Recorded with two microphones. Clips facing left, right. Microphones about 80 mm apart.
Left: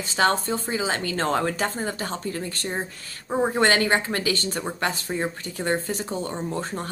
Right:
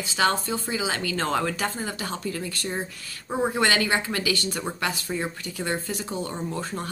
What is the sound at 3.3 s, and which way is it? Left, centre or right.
Speech, left.